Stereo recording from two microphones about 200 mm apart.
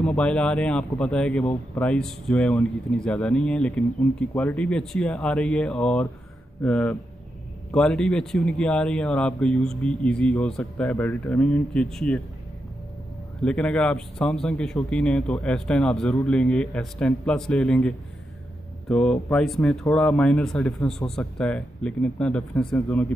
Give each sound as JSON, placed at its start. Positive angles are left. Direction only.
{"t": 0.0, "sound": "speech", "side_deg": 5}
{"t": 13.4, "sound": "speech", "side_deg": 5}